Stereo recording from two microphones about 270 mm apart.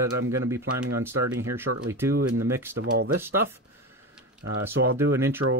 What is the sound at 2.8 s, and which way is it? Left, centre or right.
Speech, right.